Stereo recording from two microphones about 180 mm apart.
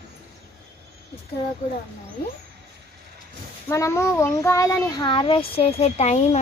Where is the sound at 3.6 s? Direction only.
15° left (ahead or behind); by 6.2 s 35° left (ahead or behind).